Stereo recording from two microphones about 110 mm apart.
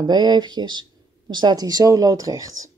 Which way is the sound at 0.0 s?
40° right (ahead or behind).